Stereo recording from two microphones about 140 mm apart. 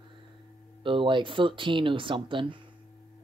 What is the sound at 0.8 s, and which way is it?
Speech, 35° right (ahead or behind).